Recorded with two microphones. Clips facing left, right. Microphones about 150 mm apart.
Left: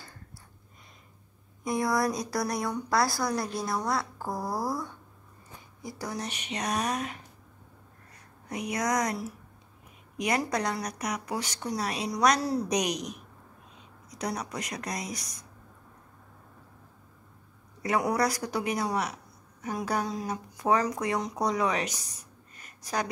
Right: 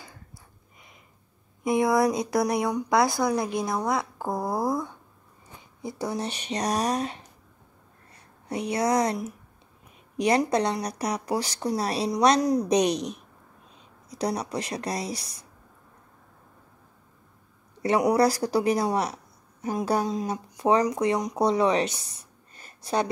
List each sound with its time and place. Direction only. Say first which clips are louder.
1.6 s a woman's voice: right 6 dB; 25° right (ahead or behind)
8.5 s a woman's voice: right 5 dB; 30° right (ahead or behind)
12.4 s a woman's voice: right 6 dB; 15° right (ahead or behind)
12.6 s a woman's voice: right 6 dB; 30° right (ahead or behind)
18.1 s speech: right 6 dB; 30° right (ahead or behind)